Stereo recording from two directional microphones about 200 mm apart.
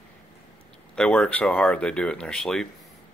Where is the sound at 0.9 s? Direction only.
5° left (ahead or behind).